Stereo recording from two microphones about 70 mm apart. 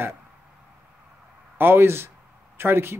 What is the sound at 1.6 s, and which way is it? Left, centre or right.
A man's voice, right.